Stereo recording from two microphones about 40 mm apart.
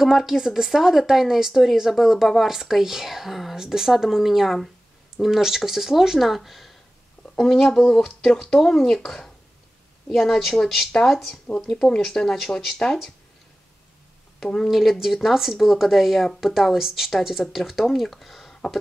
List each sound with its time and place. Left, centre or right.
0.0 s speech: centre
7.2 s a sound: left
7.7 s speech: centre
11.7 s speech: left
14.7 s speech: centre